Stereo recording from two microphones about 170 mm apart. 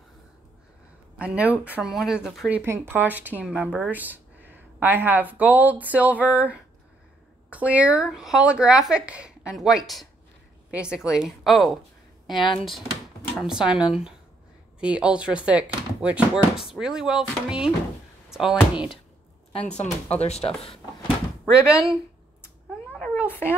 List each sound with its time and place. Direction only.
1.1 s speech: 5° right (ahead or behind)
2.6 s speech: 15° right (ahead or behind)
19.8 s speech: 40° left (ahead or behind)
22.9 s a sound: 10° left (ahead or behind)